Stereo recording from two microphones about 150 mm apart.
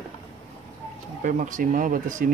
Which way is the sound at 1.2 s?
60° right (ahead or behind).